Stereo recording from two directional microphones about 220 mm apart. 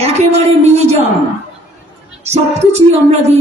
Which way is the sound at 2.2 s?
30° right (ahead or behind).